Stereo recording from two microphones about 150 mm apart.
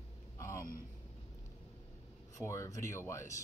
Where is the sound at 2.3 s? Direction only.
20° left (ahead or behind).